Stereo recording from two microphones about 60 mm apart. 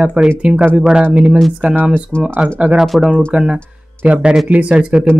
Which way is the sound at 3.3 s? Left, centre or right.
Centre.